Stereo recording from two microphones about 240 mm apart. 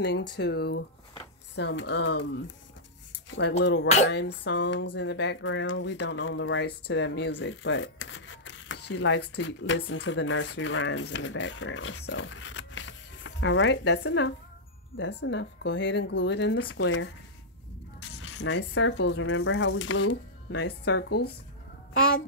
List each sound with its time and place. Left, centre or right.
0.0 s speech: left
3.3 s a sound: left
3.6 s speech: left
9.2 s a child's voice: left